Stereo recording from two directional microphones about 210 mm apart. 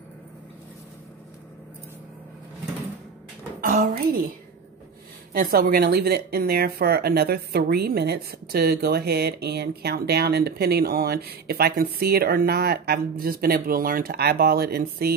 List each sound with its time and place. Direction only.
3.6 s a woman's voice: 40° right (ahead or behind)
5.3 s speech: 45° right (ahead or behind)